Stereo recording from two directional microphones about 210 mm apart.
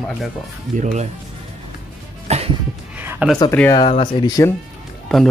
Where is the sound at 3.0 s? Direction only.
10° right (ahead or behind).